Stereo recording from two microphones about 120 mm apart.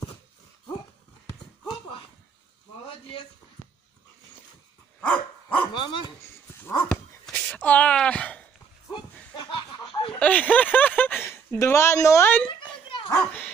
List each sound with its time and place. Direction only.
5.0 s dog: 10° left (ahead or behind)
5.7 s dog: 40° left (ahead or behind)
6.6 s dog: 15° left (ahead or behind)
6.9 s a sound: 5° left (ahead or behind)
8.9 s a sound: 40° left (ahead or behind)
10.1 s speech: 10° left (ahead or behind)